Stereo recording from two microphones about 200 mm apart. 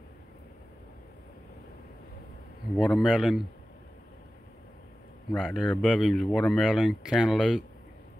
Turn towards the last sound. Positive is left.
turn(degrees=0)  # may be behind; listen again after turning